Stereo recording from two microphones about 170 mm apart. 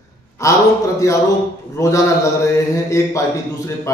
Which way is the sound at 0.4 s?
20° left (ahead or behind).